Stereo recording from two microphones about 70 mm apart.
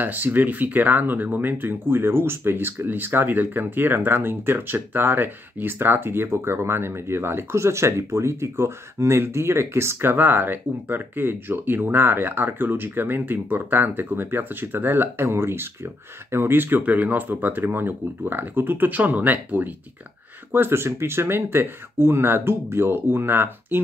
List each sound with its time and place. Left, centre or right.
0.0 s speech: right